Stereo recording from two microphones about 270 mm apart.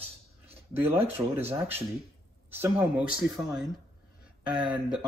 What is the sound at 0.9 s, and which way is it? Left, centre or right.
Speech, centre.